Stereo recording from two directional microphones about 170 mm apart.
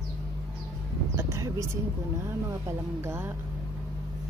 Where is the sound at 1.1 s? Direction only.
15° right (ahead or behind).